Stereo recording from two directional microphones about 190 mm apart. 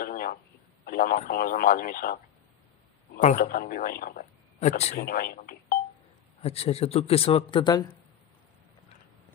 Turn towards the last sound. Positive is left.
turn(degrees=25)  # may be behind; listen again after turning